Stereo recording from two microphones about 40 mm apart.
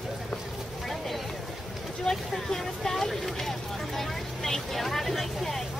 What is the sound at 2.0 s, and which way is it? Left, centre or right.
Speech, centre.